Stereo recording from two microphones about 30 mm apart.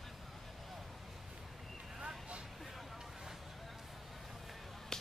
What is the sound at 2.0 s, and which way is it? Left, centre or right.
Vehicle, right.